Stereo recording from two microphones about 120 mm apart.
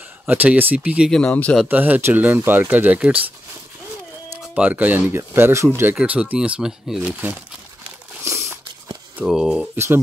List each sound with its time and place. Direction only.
0.3 s speech: 15° right (ahead or behind)
1.1 s speech: 10° left (ahead or behind)
1.7 s speech: 15° right (ahead or behind)
4.4 s speech: 10° right (ahead or behind)
5.9 s speech: 10° right (ahead or behind)
9.2 s speech: 5° right (ahead or behind)
9.8 s speech: 20° right (ahead or behind)